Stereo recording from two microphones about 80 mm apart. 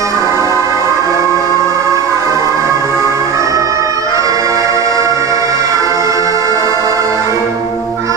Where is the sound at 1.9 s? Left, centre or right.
Right.